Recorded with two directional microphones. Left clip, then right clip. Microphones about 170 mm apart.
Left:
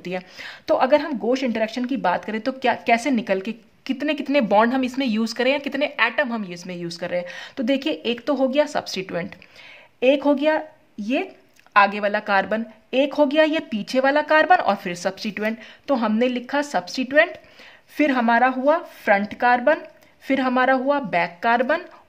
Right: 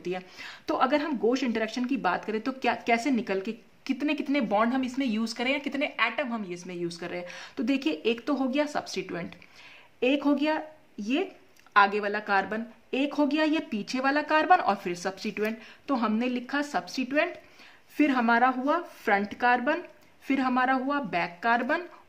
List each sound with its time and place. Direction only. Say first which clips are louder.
0.0 s speech: left 5 dB; 35° left (ahead or behind)